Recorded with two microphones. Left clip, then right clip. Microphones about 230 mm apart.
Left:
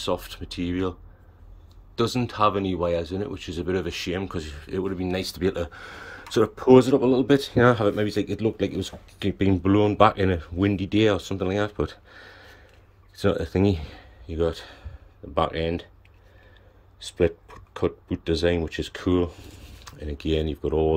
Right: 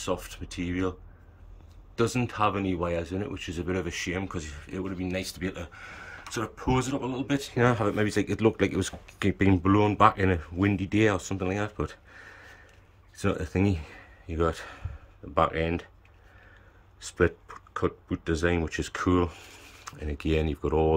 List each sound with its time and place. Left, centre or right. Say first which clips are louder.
0.0 s speech: left 4 dB; centre
2.0 s speech: left 3 dB; centre
17.0 s speech: left 2 dB; centre